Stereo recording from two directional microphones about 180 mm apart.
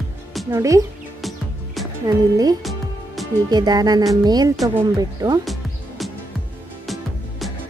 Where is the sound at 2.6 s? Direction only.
Centre (ahead or behind).